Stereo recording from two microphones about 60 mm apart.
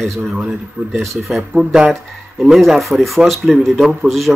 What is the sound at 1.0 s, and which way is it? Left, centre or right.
Speech, centre.